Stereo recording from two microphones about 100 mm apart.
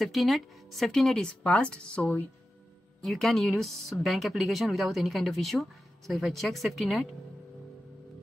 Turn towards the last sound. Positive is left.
turn(degrees=0)  # may be behind; listen again after turning